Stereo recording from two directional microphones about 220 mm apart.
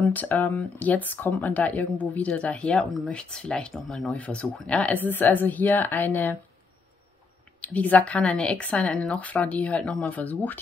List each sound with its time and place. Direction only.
0.0 s speech: 5° left (ahead or behind)
7.6 s speech: 5° left (ahead or behind)